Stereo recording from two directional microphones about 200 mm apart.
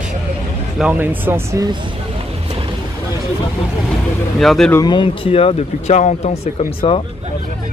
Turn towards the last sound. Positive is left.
turn(degrees=25)  # may be behind; listen again after turning